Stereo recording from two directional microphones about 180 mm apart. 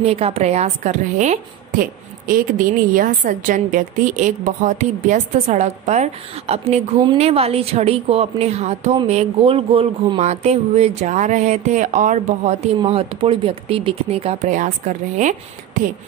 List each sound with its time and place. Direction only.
0.0 s a woman's voice: 35° right (ahead or behind)